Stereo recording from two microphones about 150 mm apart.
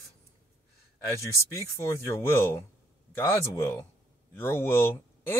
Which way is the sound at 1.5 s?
20° left (ahead or behind).